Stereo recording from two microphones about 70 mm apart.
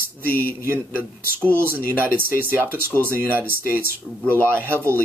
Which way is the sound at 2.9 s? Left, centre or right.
Left.